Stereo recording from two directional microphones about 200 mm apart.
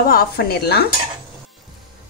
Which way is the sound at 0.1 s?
55° left (ahead or behind).